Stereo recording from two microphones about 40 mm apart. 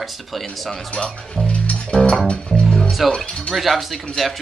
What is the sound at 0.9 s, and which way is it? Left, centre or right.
Speech, left.